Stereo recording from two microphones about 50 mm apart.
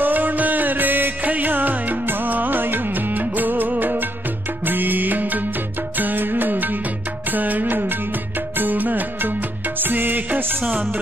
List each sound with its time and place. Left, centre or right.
0.0 s music: right